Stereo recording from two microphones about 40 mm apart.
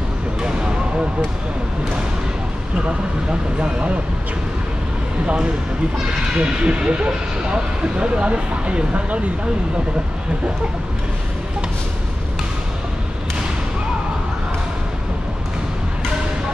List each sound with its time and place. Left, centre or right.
0.4 s a sound: right
3.6 s speech: right
5.2 s speech: right